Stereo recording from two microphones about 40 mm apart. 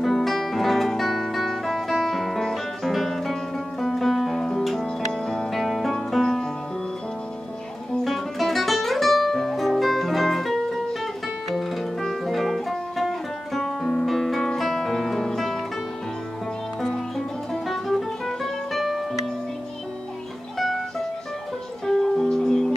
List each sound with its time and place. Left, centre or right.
0.0 s music: centre
5.5 s music: centre
8.0 s music: centre
12.3 s music: centre
17.5 s music: centre
20.5 s music: centre
21.8 s music: centre